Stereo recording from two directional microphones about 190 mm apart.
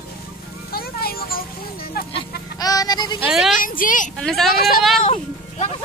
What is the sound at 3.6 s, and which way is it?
Speech, 45° left (ahead or behind).